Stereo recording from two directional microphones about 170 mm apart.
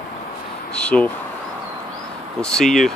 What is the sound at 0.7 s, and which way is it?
Speech, 5° left (ahead or behind).